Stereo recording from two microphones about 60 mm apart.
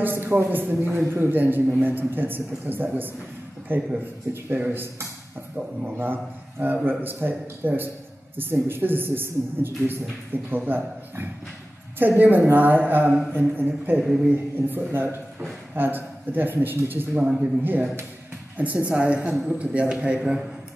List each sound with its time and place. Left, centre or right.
0.0 s a sound: right
0.5 s a man's voice: right
5.6 s a woman's voice: centre
5.9 s a man's voice: right
12.2 s a man's voice: right
14.0 s speech: centre
14.3 s a man's voice: right
17.2 s a woman's voice: right
18.6 s a woman's voice: right